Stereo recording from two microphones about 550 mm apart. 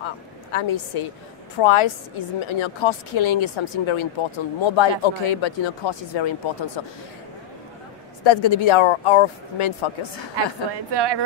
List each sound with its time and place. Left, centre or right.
0.0 s a sound: left
1.6 s a woman's voice: left
8.2 s a woman's voice: left
10.3 s a woman's voice: right